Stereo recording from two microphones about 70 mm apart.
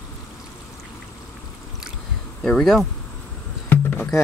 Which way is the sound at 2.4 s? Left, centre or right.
Centre.